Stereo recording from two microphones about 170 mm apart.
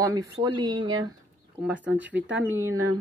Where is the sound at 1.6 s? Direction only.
10° right (ahead or behind).